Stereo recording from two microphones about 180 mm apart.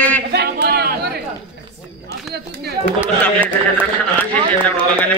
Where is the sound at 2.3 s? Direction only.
65° right (ahead or behind).